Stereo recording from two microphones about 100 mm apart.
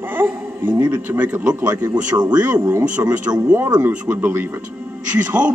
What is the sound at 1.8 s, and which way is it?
Speech, 45° right (ahead or behind).